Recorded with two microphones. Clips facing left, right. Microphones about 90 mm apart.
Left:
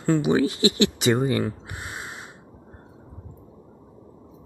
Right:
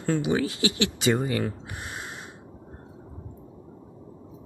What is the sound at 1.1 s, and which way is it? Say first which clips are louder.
Speech: left 4 dB; 35° left (ahead or behind).